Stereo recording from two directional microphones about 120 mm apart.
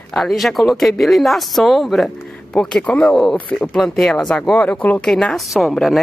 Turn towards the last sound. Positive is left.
turn(degrees=0)  # may be behind; listen again after turning